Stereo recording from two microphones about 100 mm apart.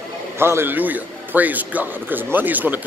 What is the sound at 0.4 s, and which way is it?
A man's voice, 25° right (ahead or behind).